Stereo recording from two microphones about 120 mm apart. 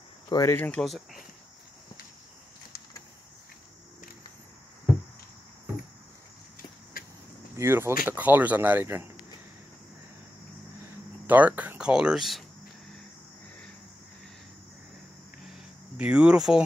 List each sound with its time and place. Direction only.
0.3 s speech: 30° left (ahead or behind)
0.6 s speech: 10° left (ahead or behind)
7.5 s speech: 20° right (ahead or behind)
11.2 s speech: 15° right (ahead or behind)
16.0 s speech: 10° right (ahead or behind)